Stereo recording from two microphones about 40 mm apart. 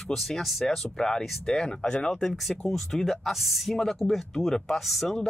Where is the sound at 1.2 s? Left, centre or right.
Centre.